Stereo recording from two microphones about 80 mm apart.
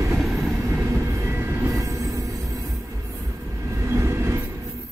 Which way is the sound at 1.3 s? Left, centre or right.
Right.